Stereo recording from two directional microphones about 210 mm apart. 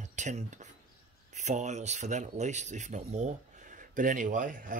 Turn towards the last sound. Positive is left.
turn(degrees=-40)  # may be behind; listen again after turning